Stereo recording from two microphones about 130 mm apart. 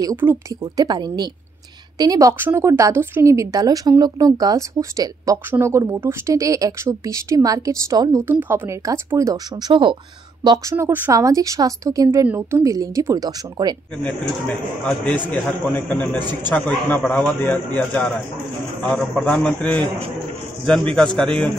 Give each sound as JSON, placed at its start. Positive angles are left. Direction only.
{"t": 0.1, "sound": "a woman's voice", "side_deg": -15}
{"t": 0.7, "sound": "a woman's voice", "side_deg": -35}
{"t": 10.7, "sound": "a woman's voice", "side_deg": -20}
{"t": 14.9, "sound": "a man's voice", "side_deg": 10}